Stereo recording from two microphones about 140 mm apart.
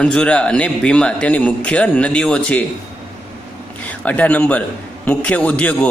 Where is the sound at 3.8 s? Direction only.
10° left (ahead or behind).